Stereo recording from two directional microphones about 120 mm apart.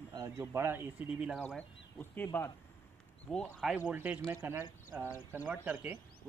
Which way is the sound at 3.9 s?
15° right (ahead or behind).